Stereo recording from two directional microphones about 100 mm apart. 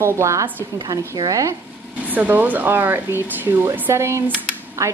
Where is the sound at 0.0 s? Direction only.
30° right (ahead or behind).